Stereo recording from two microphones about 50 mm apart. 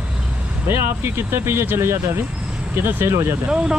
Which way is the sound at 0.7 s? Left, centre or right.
Right.